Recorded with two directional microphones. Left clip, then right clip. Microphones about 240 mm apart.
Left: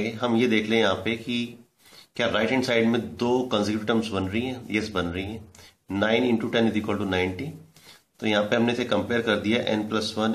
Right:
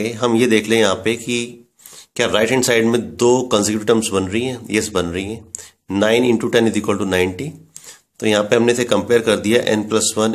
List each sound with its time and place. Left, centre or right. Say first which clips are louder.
0.0 s speech: right 8 dB; right